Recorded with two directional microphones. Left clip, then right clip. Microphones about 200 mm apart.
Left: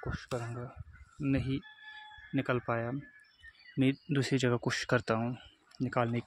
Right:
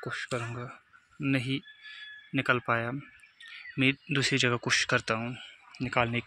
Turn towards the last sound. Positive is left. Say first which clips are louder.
# right 4 dB
turn(degrees=15)  # may be behind; listen again after turning